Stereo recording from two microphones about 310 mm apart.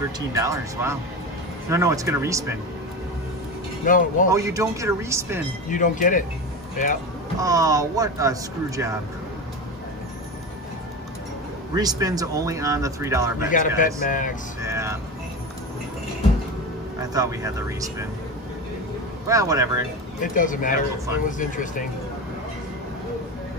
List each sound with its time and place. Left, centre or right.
0.3 s speech: centre
3.8 s speech: left
4.3 s speech: centre
5.7 s speech: left
7.3 s speech: centre
11.7 s speech: centre
13.5 s speech: left
14.6 s music: centre
17.0 s speech: centre
19.2 s speech: centre
20.2 s speech: left